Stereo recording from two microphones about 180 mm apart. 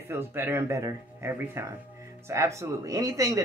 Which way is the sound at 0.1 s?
15° right (ahead or behind).